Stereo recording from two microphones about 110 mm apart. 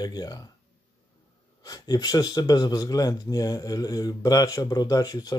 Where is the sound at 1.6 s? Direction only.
35° left (ahead or behind).